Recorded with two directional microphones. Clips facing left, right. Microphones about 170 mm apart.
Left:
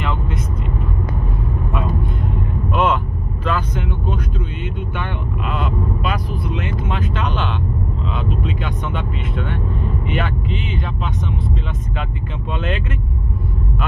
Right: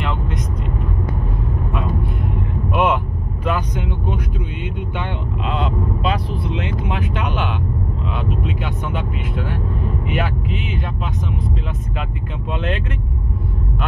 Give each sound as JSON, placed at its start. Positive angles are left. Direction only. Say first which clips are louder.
{"t": 0.0, "sound": "vehicle", "louder": "even", "side_deg": 0}
{"t": 2.7, "sound": "vehicle", "louder": "even", "side_deg": -10}
{"t": 3.4, "sound": "speech", "louder": "even", "side_deg": -15}
{"t": 12.0, "sound": "speech", "louder": "even", "side_deg": 0}